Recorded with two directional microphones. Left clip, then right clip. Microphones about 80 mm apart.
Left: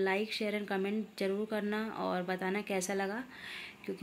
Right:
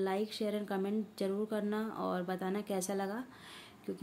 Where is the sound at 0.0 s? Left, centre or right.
Right.